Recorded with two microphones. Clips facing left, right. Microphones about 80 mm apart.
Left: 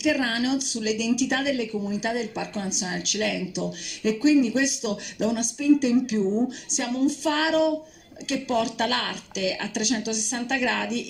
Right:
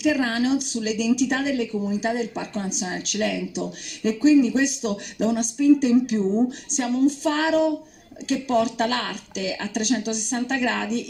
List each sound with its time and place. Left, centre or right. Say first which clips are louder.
0.0 s speech: right 2 dB; right